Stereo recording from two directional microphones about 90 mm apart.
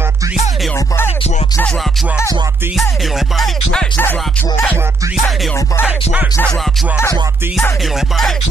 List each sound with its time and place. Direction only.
0.7 s music: 25° left (ahead or behind)
3.3 s music: 5° left (ahead or behind)